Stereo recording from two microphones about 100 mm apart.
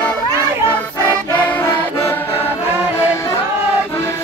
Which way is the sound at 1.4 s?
15° left (ahead or behind).